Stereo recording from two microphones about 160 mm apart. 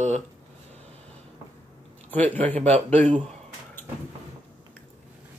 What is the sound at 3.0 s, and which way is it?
Speech, 50° right (ahead or behind).